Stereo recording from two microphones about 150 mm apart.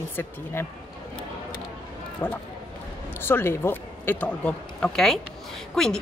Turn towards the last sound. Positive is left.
turn(degrees=0)  # may be behind; listen again after turning